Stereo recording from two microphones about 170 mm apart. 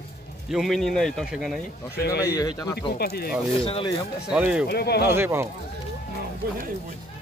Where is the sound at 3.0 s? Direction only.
65° left (ahead or behind).